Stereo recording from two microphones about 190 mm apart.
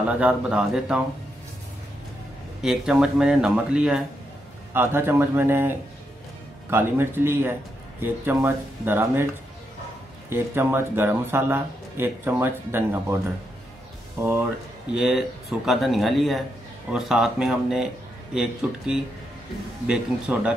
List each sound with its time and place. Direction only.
0.1 s speech: 5° right (ahead or behind)
2.6 s speech: centre (ahead or behind)
10.3 s speech: 10° right (ahead or behind)
14.2 s speech: 10° right (ahead or behind)